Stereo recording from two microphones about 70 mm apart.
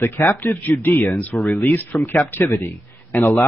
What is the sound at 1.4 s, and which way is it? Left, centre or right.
Speech, left.